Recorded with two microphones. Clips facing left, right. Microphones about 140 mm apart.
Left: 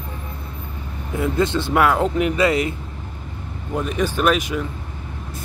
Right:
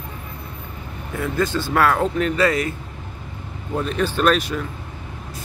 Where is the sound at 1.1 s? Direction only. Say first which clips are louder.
Left 2 dB; 25° left (ahead or behind).